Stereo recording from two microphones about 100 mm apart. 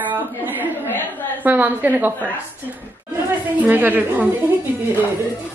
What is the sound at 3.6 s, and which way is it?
Speech, 15° right (ahead or behind).